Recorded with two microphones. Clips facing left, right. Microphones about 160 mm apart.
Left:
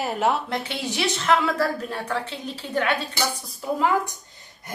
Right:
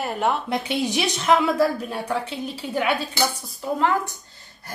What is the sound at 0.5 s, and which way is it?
A woman's voice, 15° right (ahead or behind).